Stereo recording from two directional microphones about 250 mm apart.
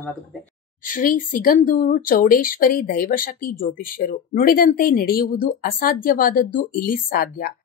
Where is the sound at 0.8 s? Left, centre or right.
Left.